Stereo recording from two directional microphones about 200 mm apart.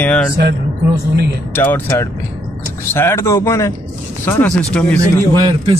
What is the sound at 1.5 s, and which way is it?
Speech, 10° left (ahead or behind).